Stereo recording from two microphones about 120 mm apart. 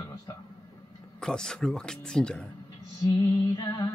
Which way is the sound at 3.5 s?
30° left (ahead or behind).